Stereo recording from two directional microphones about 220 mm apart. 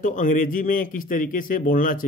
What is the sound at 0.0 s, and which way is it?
Speech, 35° left (ahead or behind).